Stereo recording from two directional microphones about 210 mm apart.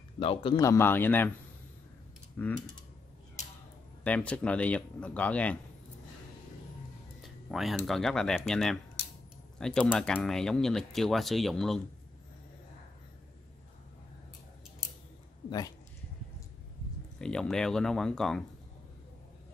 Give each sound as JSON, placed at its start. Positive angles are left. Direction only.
{"t": 0.2, "sound": "speech", "side_deg": 25}
{"t": 2.4, "sound": "speech", "side_deg": 10}
{"t": 4.0, "sound": "speech", "side_deg": 5}
{"t": 7.2, "sound": "speech", "side_deg": 0}
{"t": 17.2, "sound": "speech", "side_deg": 5}